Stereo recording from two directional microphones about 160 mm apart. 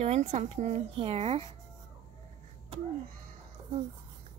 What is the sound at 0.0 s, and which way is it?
A woman's voice, 45° right (ahead or behind).